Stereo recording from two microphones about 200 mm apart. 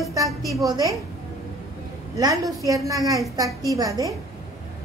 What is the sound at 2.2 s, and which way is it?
A woman's voice, 15° right (ahead or behind).